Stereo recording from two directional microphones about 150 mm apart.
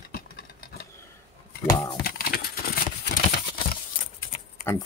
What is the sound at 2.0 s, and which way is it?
Crumpling, 90° left.